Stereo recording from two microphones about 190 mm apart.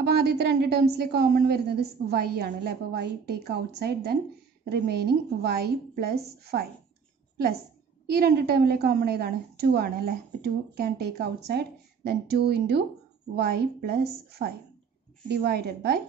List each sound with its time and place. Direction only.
0.0 s a woman's voice: 60° right (ahead or behind)
8.1 s a woman's voice: 55° right (ahead or behind)